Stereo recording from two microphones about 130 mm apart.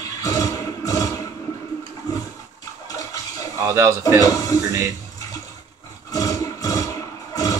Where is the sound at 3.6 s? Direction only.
25° right (ahead or behind).